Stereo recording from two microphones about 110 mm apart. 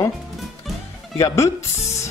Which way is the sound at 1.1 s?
25° left (ahead or behind).